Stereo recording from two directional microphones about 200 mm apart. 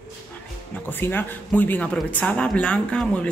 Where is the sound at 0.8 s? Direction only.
10° left (ahead or behind).